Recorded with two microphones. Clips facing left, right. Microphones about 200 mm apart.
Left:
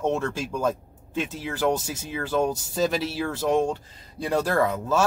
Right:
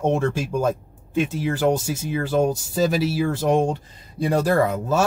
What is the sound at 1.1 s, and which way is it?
Speech, 10° right (ahead or behind).